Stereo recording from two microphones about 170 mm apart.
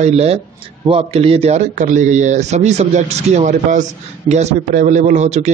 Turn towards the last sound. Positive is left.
turn(degrees=-40)  # may be behind; listen again after turning